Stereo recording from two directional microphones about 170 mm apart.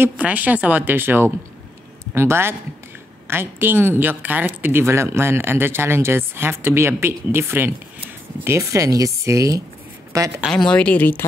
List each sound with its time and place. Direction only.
0.0 s a woman's voice: 10° right (ahead or behind)
10.4 s speech: 5° left (ahead or behind)